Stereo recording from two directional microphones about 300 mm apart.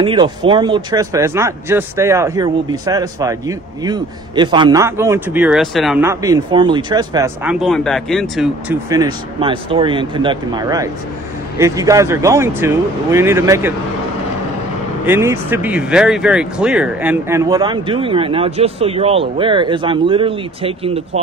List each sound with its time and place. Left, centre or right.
0.0 s speech: centre
15.0 s speech: centre